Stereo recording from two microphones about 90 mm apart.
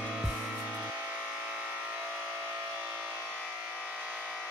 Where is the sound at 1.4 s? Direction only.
10° right (ahead or behind).